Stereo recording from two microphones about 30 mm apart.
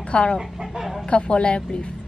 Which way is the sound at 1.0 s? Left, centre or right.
Left.